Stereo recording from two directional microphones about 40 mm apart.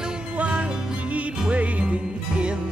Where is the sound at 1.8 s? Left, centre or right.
Right.